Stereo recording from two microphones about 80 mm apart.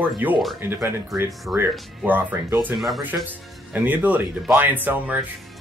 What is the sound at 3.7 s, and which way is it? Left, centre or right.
Speech, right.